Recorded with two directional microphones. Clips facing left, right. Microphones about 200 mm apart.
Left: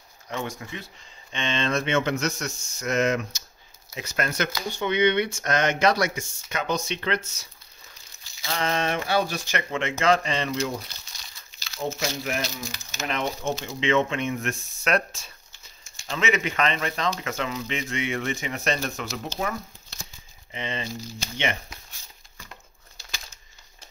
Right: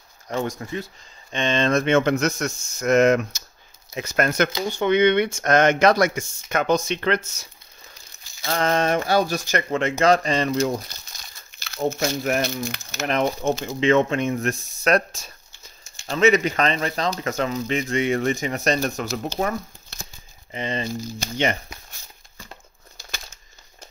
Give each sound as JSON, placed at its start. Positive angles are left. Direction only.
{"t": 0.3, "sound": "speech", "side_deg": -40}
{"t": 13.1, "sound": "speech", "side_deg": -45}